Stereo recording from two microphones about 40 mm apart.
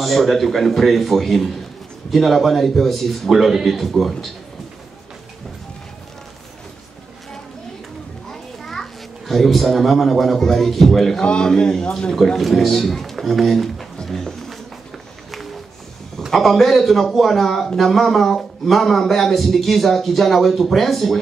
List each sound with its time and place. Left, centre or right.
0.0 s a man's voice: centre
8.3 s children playing: centre
9.3 s a man's voice: centre
11.1 s a man's voice: left
12.4 s a man's voice: centre
14.0 s music: centre
16.3 s a man's voice: centre